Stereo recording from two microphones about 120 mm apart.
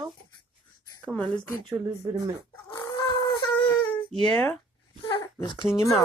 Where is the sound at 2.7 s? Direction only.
35° left (ahead or behind).